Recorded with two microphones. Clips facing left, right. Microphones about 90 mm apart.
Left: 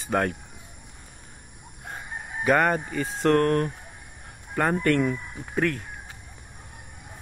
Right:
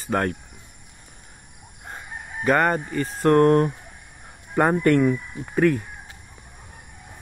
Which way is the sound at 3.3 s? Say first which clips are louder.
Right 7 dB; 25° right (ahead or behind).